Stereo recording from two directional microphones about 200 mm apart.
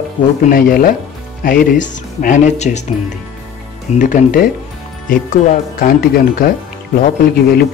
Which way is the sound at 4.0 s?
40° left (ahead or behind).